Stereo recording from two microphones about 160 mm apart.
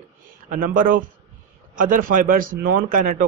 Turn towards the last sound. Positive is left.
turn(degrees=-55)  # may be behind; listen again after turning